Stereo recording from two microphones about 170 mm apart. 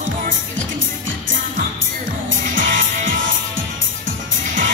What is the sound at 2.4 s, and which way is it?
Music, 50° right (ahead or behind).